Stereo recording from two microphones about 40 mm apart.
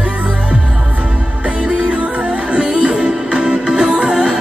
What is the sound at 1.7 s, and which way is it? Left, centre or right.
Music, right.